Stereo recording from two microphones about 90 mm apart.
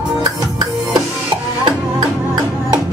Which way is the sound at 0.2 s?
50° right (ahead or behind).